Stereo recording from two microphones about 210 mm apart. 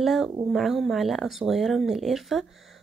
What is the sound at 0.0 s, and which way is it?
Speech, centre (ahead or behind).